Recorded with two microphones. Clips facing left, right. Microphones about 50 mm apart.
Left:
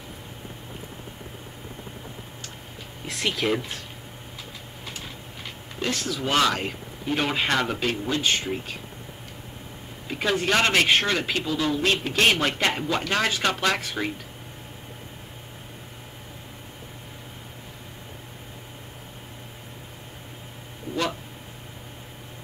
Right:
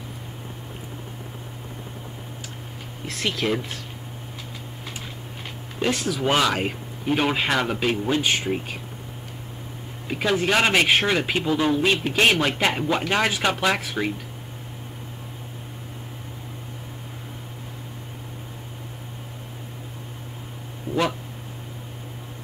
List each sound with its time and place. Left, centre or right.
3.1 s speech: centre
5.8 s speech: centre
10.0 s speech: centre; by 11.8 s right
11.8 s speech: centre